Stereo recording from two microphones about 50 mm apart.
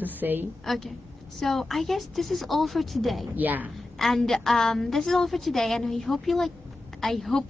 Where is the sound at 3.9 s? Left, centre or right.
Centre.